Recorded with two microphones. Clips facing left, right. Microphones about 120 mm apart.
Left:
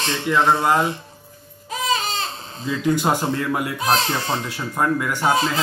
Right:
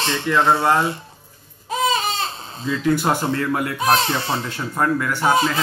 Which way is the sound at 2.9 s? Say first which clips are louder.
Even; 15° left (ahead or behind).